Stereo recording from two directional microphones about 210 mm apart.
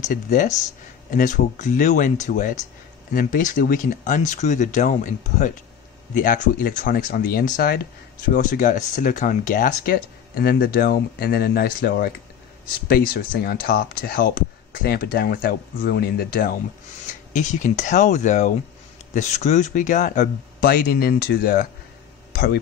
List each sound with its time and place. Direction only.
0.0 s speech: 35° left (ahead or behind)